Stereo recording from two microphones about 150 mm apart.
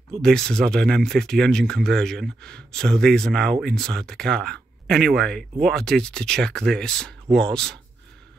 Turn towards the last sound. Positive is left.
turn(degrees=5)  # may be behind; listen again after turning